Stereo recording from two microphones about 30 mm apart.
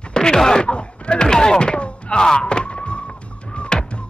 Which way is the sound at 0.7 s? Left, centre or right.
Left.